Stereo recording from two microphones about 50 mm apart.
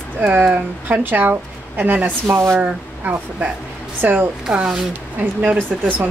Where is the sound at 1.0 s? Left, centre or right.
Right.